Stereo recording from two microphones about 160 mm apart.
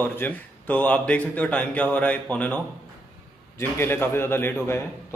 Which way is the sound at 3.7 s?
15° left (ahead or behind).